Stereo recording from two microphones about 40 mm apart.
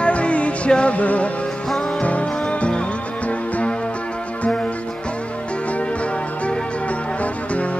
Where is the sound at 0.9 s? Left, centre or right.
Left.